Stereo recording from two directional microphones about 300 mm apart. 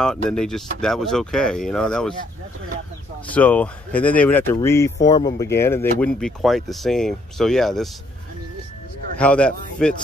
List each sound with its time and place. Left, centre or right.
0.3 s speech: centre
3.3 s speech: centre
9.2 s speech: centre